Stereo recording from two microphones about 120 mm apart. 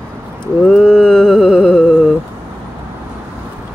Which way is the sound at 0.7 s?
5° left (ahead or behind).